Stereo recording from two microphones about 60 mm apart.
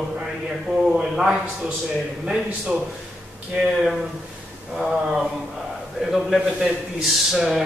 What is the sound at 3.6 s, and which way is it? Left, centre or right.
Speech, right.